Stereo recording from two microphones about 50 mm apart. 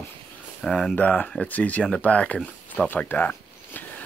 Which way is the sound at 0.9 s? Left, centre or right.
Left.